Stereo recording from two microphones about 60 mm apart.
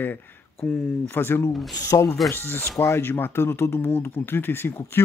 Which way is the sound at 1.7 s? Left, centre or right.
Left.